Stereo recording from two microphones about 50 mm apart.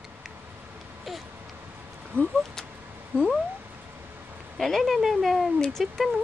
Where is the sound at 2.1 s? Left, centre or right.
Right.